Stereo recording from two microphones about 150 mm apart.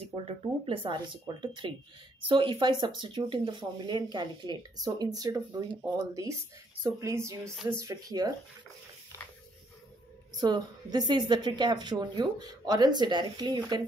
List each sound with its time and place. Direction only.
0.0 s a woman's voice: 40° right (ahead or behind)
10.3 s a woman's voice: 30° right (ahead or behind)